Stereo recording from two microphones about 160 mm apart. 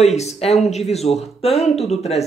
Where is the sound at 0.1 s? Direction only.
40° left (ahead or behind).